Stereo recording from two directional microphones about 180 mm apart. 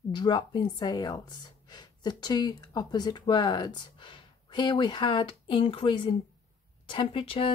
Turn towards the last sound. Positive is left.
turn(degrees=30)  # may be behind; listen again after turning